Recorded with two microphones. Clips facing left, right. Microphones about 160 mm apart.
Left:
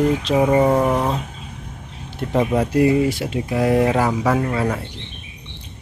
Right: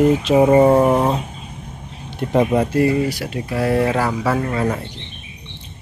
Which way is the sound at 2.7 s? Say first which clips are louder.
Left 1 dB; 15° left (ahead or behind).